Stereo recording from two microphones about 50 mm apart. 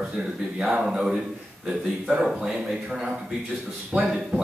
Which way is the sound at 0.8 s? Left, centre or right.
Centre.